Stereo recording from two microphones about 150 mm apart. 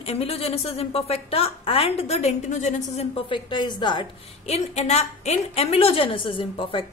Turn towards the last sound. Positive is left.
turn(degrees=35)  # may be behind; listen again after turning